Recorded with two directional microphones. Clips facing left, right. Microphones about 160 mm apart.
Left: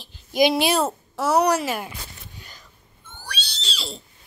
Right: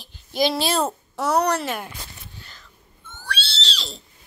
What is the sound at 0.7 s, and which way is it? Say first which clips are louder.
A child's voice: left 1 dB; 5° left (ahead or behind).